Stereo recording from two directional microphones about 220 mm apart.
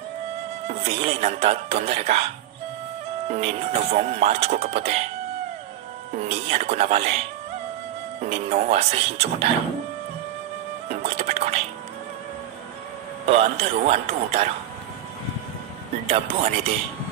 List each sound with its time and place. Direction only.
0.7 s speech: 30° right (ahead or behind)
6.1 s speech: 30° right (ahead or behind)
10.9 s music: 30° right (ahead or behind)
13.3 s speech: 30° right (ahead or behind)
16.1 s speech: 25° right (ahead or behind)